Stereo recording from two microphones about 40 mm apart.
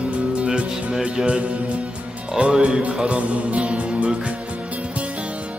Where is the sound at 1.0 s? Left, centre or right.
Right.